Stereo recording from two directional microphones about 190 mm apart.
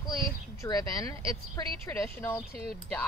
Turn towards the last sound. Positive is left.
turn(degrees=0)  # may be behind; listen again after turning